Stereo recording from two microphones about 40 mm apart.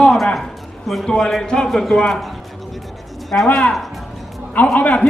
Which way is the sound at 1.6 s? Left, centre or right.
Centre.